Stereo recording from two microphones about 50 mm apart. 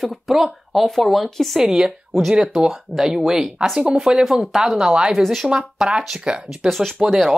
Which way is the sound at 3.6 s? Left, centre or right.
Centre.